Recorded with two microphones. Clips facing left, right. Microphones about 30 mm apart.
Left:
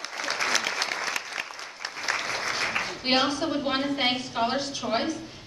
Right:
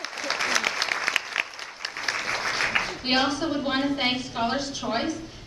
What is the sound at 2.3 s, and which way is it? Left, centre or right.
Applause, centre.